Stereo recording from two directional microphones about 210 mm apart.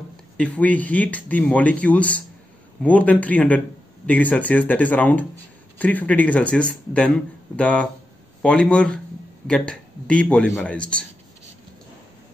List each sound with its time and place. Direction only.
0.4 s speech: 5° left (ahead or behind)